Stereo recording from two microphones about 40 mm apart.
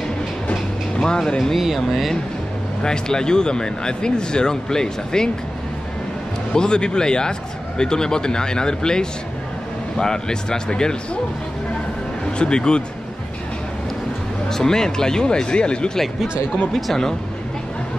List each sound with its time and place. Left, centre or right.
0.5 s train: left
2.8 s speech: centre
6.5 s speech: left
12.4 s speech: left
14.5 s speech: centre
16.7 s speech: centre